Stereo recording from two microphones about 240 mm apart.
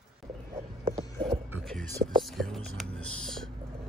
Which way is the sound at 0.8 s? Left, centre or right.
Right.